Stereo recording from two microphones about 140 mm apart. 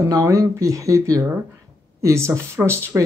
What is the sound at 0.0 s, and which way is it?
Speech, 20° right (ahead or behind).